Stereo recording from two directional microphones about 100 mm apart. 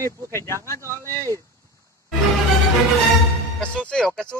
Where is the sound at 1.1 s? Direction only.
35° right (ahead or behind).